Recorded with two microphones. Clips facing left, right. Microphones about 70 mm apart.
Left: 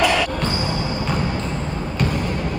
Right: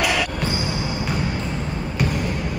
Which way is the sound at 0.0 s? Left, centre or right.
Centre.